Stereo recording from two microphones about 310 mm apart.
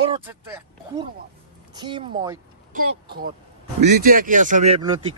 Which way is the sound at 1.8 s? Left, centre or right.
Centre.